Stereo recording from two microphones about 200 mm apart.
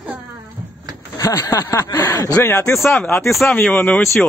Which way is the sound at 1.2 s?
15° left (ahead or behind).